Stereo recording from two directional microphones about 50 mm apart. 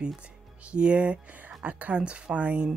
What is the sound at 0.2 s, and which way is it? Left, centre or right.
Speech, right.